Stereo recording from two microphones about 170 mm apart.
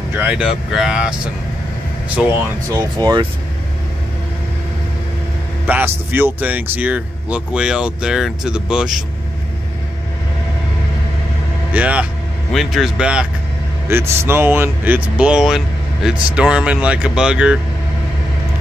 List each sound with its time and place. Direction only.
0.1 s speech: 10° right (ahead or behind)
2.7 s speech: 25° right (ahead or behind)
5.7 s speech: 10° right (ahead or behind)
11.7 s speech: 10° right (ahead or behind)